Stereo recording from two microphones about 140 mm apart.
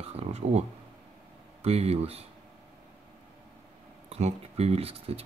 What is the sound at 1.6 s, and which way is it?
Speech, 45° right (ahead or behind).